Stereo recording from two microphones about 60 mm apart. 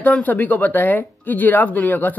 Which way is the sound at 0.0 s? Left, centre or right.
Left.